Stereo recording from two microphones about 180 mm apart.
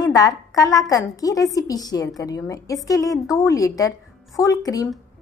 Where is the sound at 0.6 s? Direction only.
20° left (ahead or behind).